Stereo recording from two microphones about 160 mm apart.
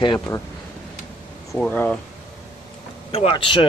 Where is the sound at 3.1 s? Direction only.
35° left (ahead or behind).